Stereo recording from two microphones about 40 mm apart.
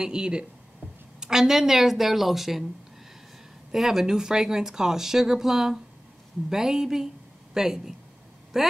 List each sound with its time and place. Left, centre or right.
0.0 s speech: centre
3.7 s speech: centre